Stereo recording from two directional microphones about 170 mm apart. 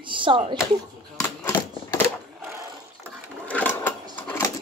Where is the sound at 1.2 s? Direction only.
15° left (ahead or behind).